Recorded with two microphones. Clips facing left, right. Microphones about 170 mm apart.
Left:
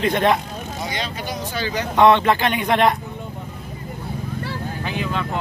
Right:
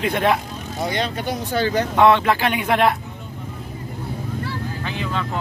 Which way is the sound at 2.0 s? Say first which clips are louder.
Left 2 dB; 5° right (ahead or behind).